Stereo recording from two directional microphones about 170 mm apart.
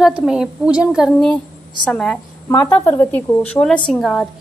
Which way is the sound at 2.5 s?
20° left (ahead or behind).